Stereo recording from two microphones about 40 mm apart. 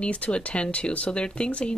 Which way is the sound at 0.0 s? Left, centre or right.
Left.